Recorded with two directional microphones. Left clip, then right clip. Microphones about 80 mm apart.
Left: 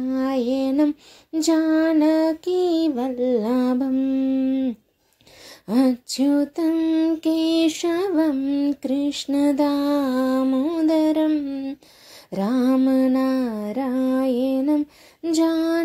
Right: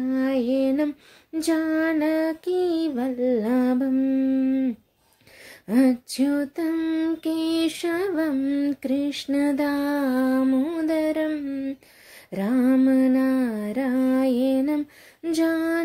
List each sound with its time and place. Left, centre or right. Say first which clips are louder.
0.1 s female singing: left 1 dB; left
7.2 s female singing: left 4 dB; left
11.2 s female singing: left 4 dB; left
12.3 s female singing: left 1 dB; left
13.9 s lullaby: left 1 dB; left
15.2 s female singing: left 3 dB; left